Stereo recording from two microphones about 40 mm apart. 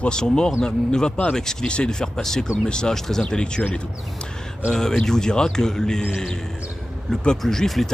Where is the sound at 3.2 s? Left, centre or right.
Left.